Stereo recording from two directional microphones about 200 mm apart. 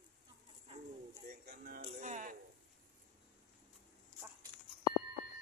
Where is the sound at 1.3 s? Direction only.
50° right (ahead or behind).